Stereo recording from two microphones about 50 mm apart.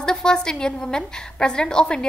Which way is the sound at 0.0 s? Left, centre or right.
Centre.